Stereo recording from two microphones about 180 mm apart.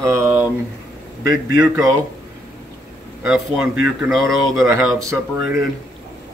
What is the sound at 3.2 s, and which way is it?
Speech, 5° right (ahead or behind).